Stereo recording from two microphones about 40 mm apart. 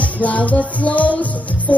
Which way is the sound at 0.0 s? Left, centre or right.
Left.